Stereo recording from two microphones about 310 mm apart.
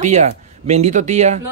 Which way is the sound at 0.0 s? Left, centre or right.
Right.